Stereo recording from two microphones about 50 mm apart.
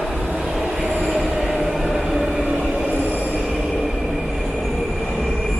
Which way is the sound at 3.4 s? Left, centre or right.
Centre.